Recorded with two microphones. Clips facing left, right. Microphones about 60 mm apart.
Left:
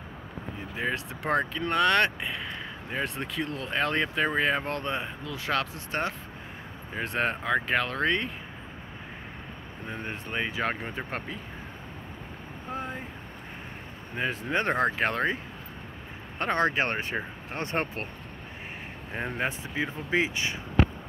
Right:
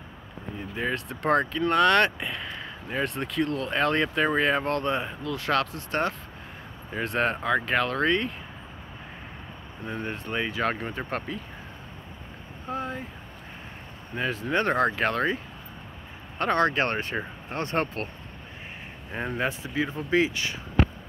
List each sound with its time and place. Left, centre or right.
0.7 s speech: centre
4.6 s speech: centre
10.0 s speech: centre
14.1 s speech: centre
16.3 s speech: centre
19.1 s speech: centre